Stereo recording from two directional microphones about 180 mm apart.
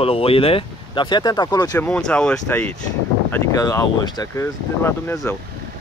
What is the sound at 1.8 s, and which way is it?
Speech, 10° left (ahead or behind).